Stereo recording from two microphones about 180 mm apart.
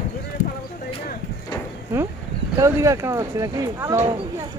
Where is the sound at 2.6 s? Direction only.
15° right (ahead or behind).